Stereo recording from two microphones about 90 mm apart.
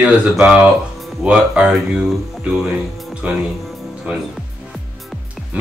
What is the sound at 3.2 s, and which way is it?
Speech, 15° right (ahead or behind).